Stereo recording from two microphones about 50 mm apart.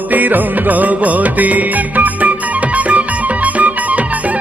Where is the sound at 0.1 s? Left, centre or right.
Right.